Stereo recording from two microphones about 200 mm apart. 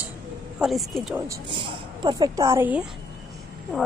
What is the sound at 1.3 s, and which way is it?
A woman's voice, 25° right (ahead or behind).